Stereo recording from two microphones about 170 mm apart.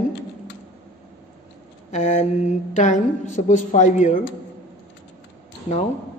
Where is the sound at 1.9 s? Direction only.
45° left (ahead or behind).